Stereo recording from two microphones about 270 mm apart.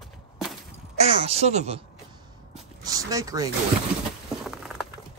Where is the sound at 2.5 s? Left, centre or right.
Centre.